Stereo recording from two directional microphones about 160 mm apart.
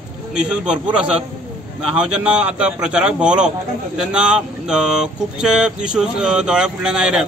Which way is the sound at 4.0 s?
5° right (ahead or behind).